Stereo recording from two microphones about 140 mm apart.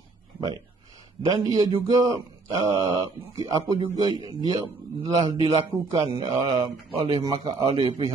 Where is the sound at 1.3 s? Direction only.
25° right (ahead or behind).